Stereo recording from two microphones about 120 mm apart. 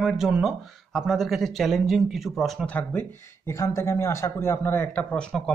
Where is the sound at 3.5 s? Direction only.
25° left (ahead or behind).